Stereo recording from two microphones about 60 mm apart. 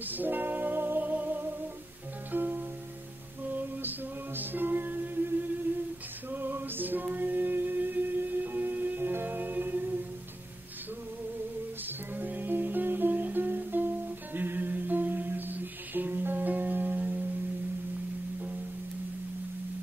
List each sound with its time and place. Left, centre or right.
0.0 s music: right
4.4 s music: right
12.2 s music: right